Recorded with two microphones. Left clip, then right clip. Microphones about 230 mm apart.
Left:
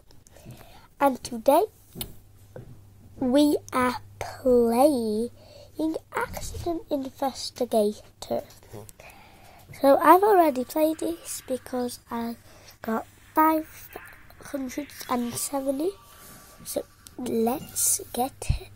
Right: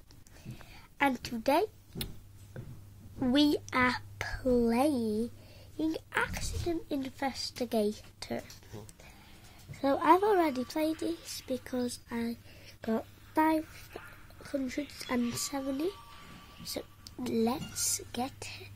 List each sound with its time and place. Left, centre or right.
0.4 s a sound: centre
1.5 s speech: centre
3.2 s a woman's voice: centre
10.8 s speech: centre
11.1 s speech: centre
13.8 s a sound: centre
14.6 s speech: centre
17.3 s speech: centre